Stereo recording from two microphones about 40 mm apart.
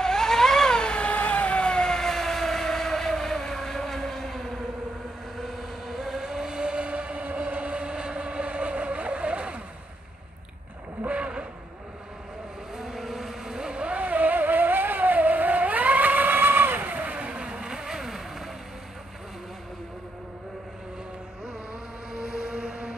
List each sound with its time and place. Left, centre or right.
0.0 s vehicle: centre
1.0 s vehicle: left; by 9.6 s right
11.1 s a sound: right
12.7 s vehicle: centre; by 13.9 s right
13.9 s vehicle: right
16.9 s vehicle: right; by 18.5 s centre
22.1 s vehicle: centre